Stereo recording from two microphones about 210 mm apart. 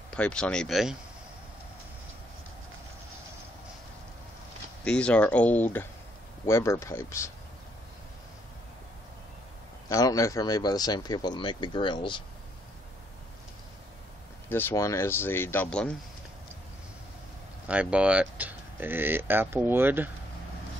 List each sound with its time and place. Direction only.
0.1 s speech: 5° left (ahead or behind)
4.8 s speech: 5° left (ahead or behind)
9.8 s speech: 15° left (ahead or behind)
14.5 s speech: 10° left (ahead or behind)
17.6 s speech: 5° right (ahead or behind)